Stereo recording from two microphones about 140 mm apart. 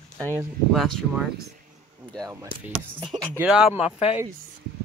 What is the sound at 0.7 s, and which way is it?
Speech, centre (ahead or behind).